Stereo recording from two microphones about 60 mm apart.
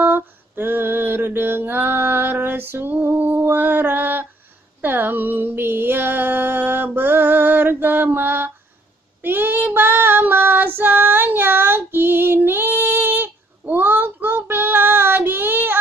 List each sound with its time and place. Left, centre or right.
0.0 s female singing: right
4.8 s music: right
9.2 s female singing: right